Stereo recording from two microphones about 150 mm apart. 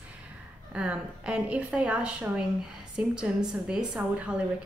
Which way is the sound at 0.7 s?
5° right (ahead or behind).